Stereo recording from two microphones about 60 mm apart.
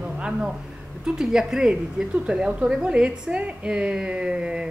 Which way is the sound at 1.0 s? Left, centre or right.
Centre.